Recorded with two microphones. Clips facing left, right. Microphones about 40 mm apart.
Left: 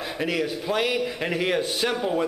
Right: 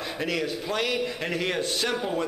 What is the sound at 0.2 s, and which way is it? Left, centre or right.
A man's voice, centre.